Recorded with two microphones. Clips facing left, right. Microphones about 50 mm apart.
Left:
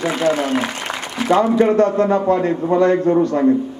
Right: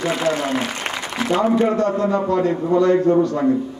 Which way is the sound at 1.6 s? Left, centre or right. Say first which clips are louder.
Left 4 dB; left.